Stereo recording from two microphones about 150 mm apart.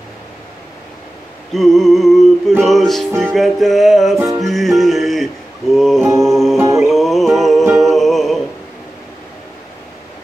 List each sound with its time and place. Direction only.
1.5 s a sound: centre (ahead or behind)
2.6 s music: centre (ahead or behind)
6.6 s music: 20° right (ahead or behind)
6.9 s music: centre (ahead or behind)